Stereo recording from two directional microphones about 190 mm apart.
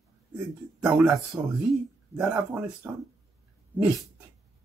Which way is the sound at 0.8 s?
5° right (ahead or behind).